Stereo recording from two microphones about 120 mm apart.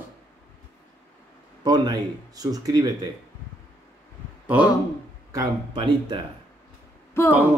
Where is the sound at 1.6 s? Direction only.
35° right (ahead or behind).